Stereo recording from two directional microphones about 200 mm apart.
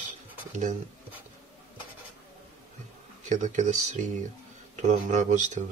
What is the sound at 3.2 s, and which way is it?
Speech, 40° right (ahead or behind).